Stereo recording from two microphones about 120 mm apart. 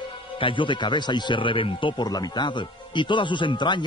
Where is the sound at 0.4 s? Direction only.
45° left (ahead or behind).